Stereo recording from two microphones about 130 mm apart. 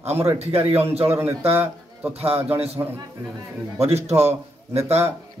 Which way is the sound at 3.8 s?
55° right (ahead or behind).